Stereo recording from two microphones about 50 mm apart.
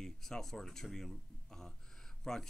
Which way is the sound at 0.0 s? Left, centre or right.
Centre.